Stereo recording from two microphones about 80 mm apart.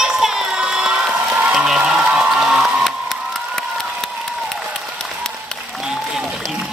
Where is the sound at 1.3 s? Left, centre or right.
Centre.